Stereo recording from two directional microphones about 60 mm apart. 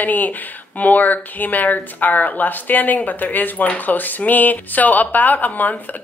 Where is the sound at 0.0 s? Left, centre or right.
Left.